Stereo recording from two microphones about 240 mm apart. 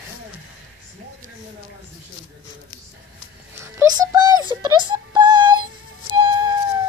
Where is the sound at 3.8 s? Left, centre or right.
Centre.